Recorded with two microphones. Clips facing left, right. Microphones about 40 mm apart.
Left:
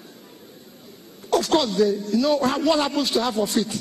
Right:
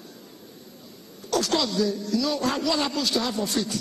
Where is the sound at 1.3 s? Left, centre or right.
Left.